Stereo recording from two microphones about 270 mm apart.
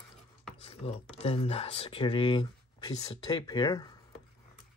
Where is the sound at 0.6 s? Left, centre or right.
Left.